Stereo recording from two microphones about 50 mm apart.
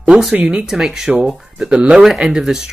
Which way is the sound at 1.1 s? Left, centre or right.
Right.